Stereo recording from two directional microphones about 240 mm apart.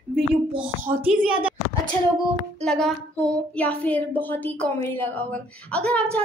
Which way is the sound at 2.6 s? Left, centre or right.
Centre.